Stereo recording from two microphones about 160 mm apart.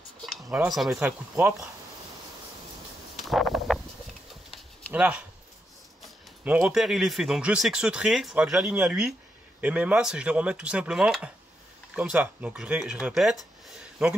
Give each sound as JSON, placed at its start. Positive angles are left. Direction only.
{"t": 0.2, "sound": "cutlery", "side_deg": 0}
{"t": 0.5, "sound": "speech", "side_deg": -5}
{"t": 3.3, "sound": "a sound", "side_deg": 0}
{"t": 4.9, "sound": "speech", "side_deg": -10}